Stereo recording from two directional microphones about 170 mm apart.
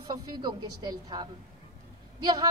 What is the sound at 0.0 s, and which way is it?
A woman's voice, 25° right (ahead or behind).